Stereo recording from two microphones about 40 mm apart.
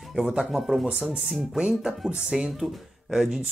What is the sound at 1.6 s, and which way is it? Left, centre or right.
Speech, centre.